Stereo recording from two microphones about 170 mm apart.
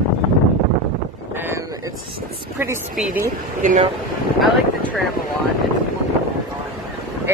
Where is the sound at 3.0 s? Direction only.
5° right (ahead or behind).